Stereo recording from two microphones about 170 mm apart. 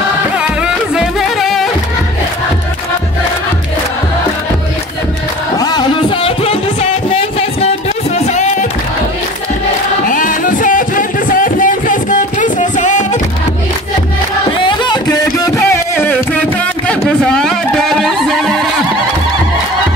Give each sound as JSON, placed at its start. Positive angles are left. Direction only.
{"t": 0.4, "sound": "music", "side_deg": -5}
{"t": 5.6, "sound": "music", "side_deg": 25}
{"t": 10.0, "sound": "music", "side_deg": 55}
{"t": 14.6, "sound": "a sound", "side_deg": 25}